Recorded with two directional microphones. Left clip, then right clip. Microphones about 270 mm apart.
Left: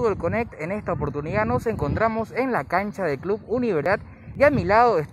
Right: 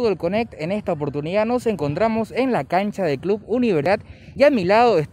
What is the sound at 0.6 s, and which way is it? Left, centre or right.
Speech, right.